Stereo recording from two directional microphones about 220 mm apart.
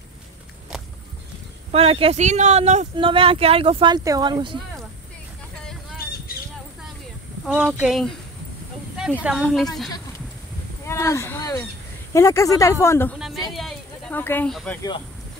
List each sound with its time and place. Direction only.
1.7 s speech: 25° right (ahead or behind)
7.4 s speech: 5° right (ahead or behind)
9.2 s speech: centre (ahead or behind)
10.9 s speech: 15° left (ahead or behind)
13.2 s speech: centre (ahead or behind)